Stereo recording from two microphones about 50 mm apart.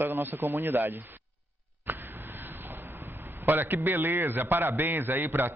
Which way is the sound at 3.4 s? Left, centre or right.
Right.